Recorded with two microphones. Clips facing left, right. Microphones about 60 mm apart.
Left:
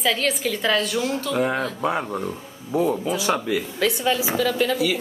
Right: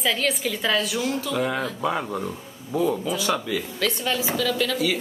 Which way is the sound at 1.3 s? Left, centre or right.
Centre.